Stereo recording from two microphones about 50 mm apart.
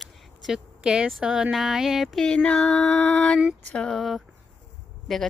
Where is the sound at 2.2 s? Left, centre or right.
Centre.